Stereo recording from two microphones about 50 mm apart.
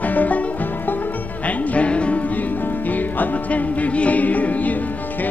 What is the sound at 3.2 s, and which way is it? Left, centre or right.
Music, left.